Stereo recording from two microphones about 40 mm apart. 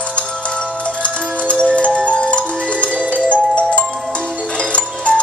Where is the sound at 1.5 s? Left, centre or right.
Left.